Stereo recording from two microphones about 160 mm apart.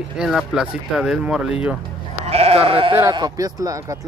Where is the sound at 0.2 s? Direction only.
5° right (ahead or behind).